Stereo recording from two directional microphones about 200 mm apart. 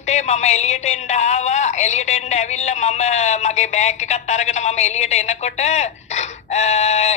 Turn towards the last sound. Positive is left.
turn(degrees=35)  # may be behind; listen again after turning